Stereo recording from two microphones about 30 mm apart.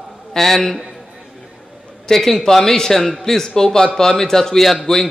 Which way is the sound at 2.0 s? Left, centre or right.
Centre.